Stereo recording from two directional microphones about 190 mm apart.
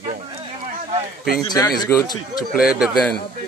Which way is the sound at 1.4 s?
20° left (ahead or behind).